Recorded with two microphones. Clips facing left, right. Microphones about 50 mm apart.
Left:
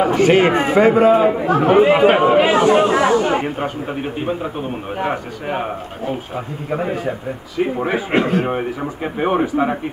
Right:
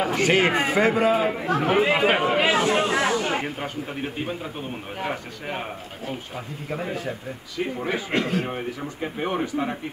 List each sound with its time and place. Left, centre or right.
0.0 s a man's voice: centre; by 9.8 s left